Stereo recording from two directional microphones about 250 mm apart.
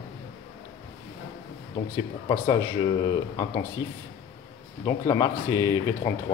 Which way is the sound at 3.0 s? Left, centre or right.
Centre.